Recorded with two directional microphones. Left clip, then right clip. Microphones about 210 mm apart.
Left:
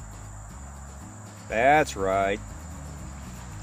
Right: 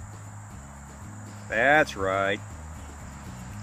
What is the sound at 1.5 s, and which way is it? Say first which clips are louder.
Speech: left 1 dB; 35° left (ahead or behind).